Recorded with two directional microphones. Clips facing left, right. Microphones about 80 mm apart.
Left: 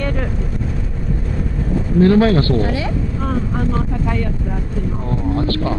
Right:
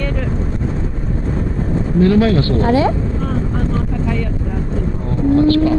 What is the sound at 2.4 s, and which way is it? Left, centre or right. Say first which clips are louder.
Mantra: right 5 dB; right.